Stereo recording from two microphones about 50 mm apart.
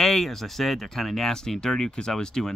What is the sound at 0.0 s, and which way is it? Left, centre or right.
Speech, centre.